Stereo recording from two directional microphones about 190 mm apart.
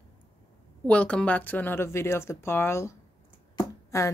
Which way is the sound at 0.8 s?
5° left (ahead or behind).